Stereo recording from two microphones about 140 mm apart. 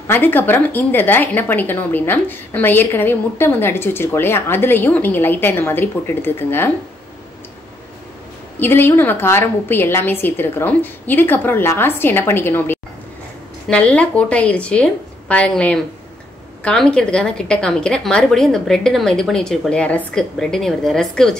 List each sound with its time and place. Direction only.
0.0 s a woman's voice: 15° left (ahead or behind)
8.5 s a woman's voice: 15° left (ahead or behind)